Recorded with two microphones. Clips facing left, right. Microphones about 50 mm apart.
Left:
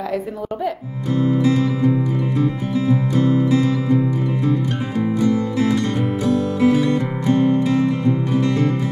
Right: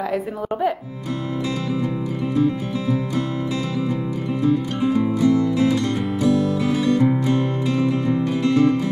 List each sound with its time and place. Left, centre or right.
2.9 s music: left
5.3 s music: left